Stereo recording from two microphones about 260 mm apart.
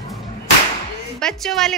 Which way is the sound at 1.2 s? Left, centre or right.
Centre.